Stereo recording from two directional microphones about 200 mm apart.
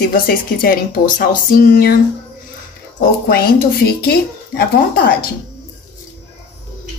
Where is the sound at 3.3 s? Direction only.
50° left (ahead or behind).